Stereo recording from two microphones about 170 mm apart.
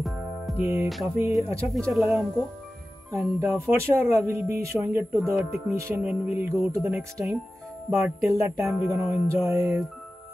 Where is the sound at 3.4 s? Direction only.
15° right (ahead or behind).